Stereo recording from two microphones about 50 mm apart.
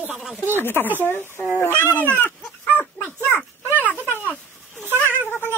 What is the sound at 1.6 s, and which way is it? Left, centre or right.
Speech, right.